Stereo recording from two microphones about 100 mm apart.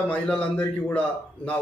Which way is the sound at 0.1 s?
10° left (ahead or behind).